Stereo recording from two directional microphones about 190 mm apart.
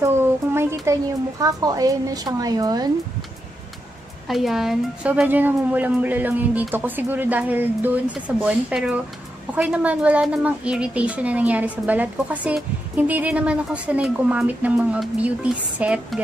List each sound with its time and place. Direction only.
0.0 s a woman's voice: 15° right (ahead or behind)
4.3 s a woman's voice: centre (ahead or behind)